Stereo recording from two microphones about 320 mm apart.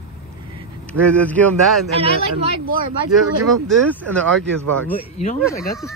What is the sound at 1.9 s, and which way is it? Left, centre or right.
Speech, centre.